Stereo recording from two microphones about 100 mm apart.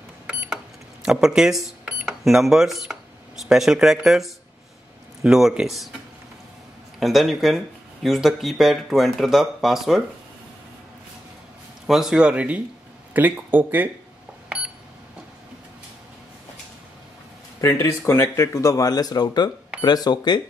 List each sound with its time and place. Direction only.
0.3 s a sound: 10° right (ahead or behind)
1.0 s speech: 5° right (ahead or behind)
7.0 s speech: centre (ahead or behind)
11.9 s speech: 5° right (ahead or behind)
17.6 s speech: 25° left (ahead or behind); by 20.4 s 45° left (ahead or behind)